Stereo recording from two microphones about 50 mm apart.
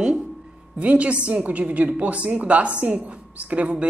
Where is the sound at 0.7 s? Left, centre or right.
Right.